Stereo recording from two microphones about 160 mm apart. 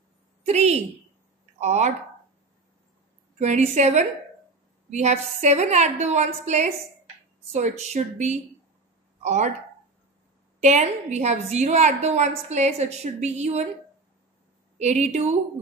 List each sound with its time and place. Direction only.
0.4 s a woman's voice: 45° right (ahead or behind)
3.3 s a woman's voice: 45° right (ahead or behind)
10.6 s a woman's voice: 45° right (ahead or behind)
14.8 s a woman's voice: 45° right (ahead or behind)